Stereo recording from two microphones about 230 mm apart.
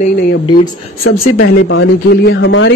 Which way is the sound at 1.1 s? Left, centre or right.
Left.